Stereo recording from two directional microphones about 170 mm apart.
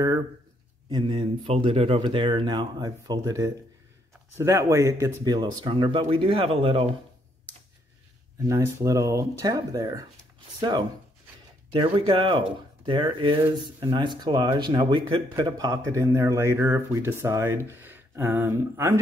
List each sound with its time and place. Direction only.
0.8 s speech: 30° right (ahead or behind)
8.5 s speech: 20° right (ahead or behind)